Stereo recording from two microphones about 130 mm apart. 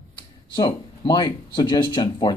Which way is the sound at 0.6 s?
35° left (ahead or behind).